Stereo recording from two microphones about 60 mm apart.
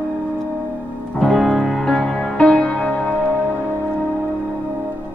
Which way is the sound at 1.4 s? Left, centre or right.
Centre.